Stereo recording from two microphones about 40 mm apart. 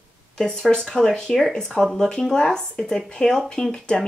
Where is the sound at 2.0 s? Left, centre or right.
Centre.